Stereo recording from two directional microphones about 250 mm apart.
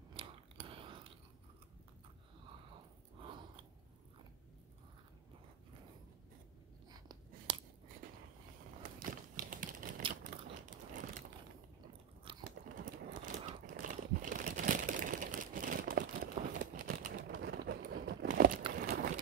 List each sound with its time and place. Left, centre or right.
0.1 s biting: right
3.2 s chewing: centre
6.9 s writing: centre
9.4 s typing: right
10.2 s a sound: right
12.4 s crumpling: right
18.8 s clip-clop: right